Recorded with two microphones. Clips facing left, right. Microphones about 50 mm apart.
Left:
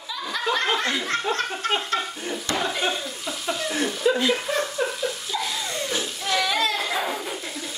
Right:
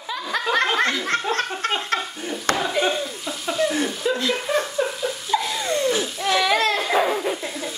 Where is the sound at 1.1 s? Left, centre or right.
Right.